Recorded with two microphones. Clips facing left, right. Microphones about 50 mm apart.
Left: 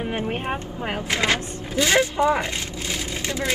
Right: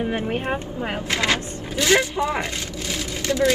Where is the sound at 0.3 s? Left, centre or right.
Centre.